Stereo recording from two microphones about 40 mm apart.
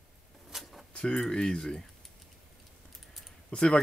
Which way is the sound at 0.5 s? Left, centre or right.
Centre.